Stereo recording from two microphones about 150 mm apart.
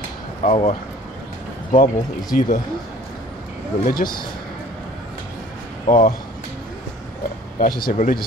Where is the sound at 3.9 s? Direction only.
70° left (ahead or behind).